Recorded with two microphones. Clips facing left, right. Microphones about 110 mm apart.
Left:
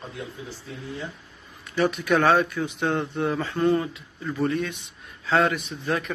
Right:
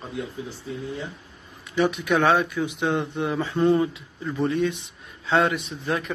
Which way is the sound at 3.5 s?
20° right (ahead or behind).